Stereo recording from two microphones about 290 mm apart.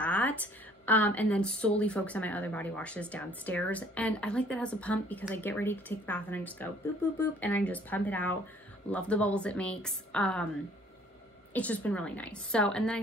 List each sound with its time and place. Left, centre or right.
0.0 s a woman's voice: centre
11.5 s a woman's voice: centre